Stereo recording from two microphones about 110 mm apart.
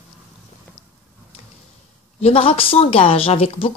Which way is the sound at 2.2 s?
60° left (ahead or behind).